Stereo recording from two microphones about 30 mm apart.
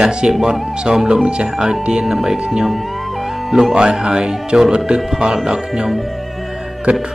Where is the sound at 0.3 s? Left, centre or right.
Right.